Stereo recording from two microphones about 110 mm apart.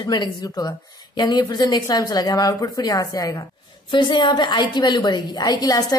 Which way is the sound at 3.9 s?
45° left (ahead or behind).